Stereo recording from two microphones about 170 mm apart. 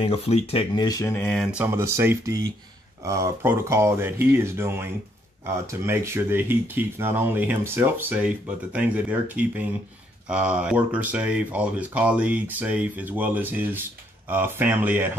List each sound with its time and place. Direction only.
0.0 s speech: 35° left (ahead or behind)
0.8 s speech: 15° left (ahead or behind)
1.4 s speech: 10° right (ahead or behind)